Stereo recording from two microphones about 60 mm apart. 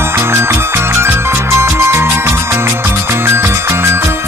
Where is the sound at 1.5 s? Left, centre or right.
Right.